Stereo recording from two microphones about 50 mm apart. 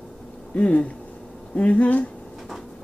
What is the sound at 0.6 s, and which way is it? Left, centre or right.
Speech, left.